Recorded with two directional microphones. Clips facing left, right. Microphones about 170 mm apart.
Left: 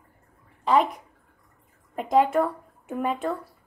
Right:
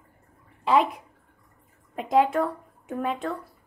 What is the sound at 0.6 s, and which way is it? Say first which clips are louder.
Speech: even; 5° right (ahead or behind).